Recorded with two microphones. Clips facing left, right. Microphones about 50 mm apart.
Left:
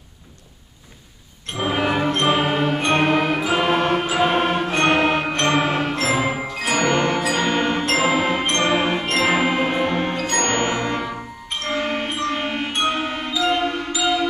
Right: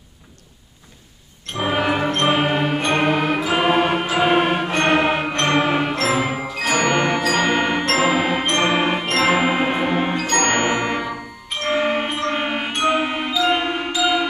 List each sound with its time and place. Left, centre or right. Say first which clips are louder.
1.6 s music: right 1 dB; centre
7.5 s music: right 1 dB; centre
10.2 s music: right 2 dB; centre
11.6 s wind chime: right 4 dB; centre
12.8 s music: right 6 dB; centre
13.9 s music: right 3 dB; centre